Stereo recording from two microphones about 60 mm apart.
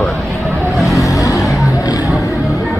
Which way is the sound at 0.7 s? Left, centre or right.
Centre.